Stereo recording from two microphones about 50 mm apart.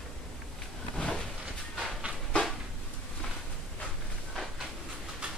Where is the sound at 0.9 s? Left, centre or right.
Centre.